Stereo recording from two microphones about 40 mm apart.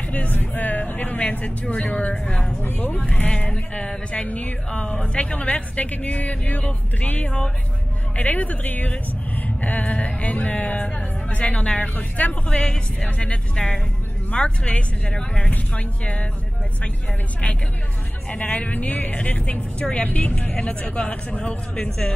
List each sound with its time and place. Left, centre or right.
0.1 s a woman's voice: left
2.6 s speech: left
3.3 s a woman's voice: left
8.2 s a woman's voice: left
9.9 s a woman's voice: left
11.9 s speech: left
12.4 s speech: left
13.0 s a woman's voice: left
18.3 s a woman's voice: left; by 22.1 s centre